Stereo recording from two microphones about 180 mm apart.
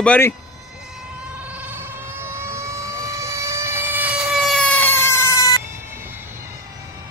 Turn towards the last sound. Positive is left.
turn(degrees=20)  # may be behind; listen again after turning